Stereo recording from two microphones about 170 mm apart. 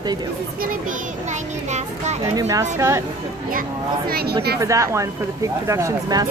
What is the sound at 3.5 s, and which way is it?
Speech, 60° right (ahead or behind).